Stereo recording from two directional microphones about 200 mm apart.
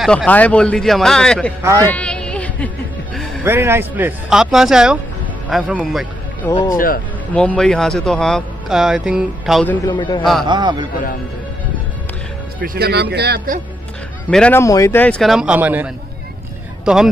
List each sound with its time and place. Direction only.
0.0 s speech: 5° left (ahead or behind)
1.6 s a man's voice: 15° right (ahead or behind)
1.9 s a sound: 5° left (ahead or behind)
3.4 s speech: 10° right (ahead or behind)
9.8 s a man's voice: 20° left (ahead or behind)
10.4 s a man's voice: 20° right (ahead or behind)
12.6 s speech: 55° right (ahead or behind)
14.3 s speech: 10° left (ahead or behind)